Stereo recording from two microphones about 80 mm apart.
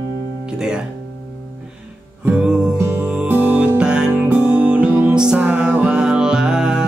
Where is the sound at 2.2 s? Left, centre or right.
Centre.